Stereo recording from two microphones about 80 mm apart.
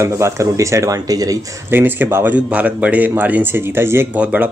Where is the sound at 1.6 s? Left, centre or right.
Right.